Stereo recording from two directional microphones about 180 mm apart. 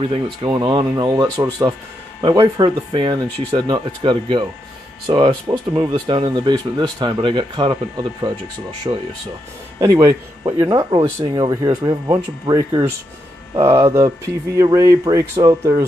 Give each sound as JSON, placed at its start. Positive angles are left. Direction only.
{"t": 0.0, "sound": "speech", "side_deg": -25}
{"t": 8.9, "sound": "speech", "side_deg": -25}